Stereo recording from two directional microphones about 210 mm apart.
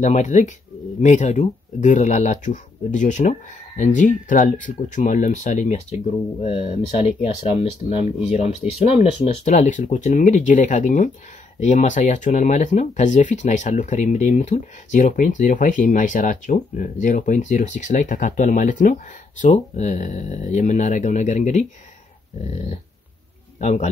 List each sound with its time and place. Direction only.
0.0 s speech: 35° left (ahead or behind)
23.6 s speech: 35° left (ahead or behind)